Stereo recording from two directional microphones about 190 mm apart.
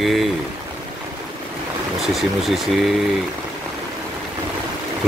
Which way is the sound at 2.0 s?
Centre (ahead or behind).